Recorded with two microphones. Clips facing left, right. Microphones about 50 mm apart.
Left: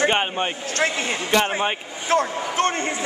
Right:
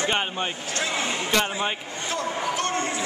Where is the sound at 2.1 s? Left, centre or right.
Left.